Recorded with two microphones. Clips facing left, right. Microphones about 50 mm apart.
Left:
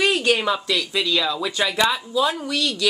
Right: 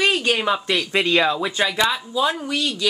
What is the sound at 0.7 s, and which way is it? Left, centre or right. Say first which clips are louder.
Speech: right 3 dB; right.